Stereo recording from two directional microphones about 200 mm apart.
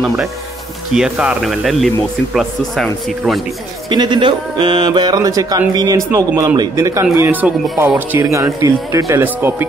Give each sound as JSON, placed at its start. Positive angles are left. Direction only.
{"t": 0.0, "sound": "a man's voice", "side_deg": 0}
{"t": 3.9, "sound": "speech", "side_deg": -25}